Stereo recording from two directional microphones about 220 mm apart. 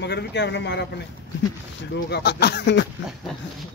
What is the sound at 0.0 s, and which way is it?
Speech, 50° left (ahead or behind).